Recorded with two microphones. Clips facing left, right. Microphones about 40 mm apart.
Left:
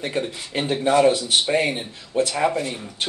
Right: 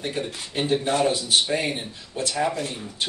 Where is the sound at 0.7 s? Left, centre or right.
Left.